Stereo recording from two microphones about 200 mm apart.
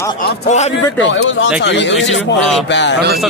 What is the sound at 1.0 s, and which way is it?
A man's voice, 70° left (ahead or behind).